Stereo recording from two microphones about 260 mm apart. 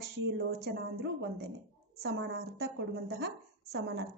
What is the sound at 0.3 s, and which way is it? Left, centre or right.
A woman's voice, right.